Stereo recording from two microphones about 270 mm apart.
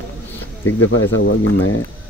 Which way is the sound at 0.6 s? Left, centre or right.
Left.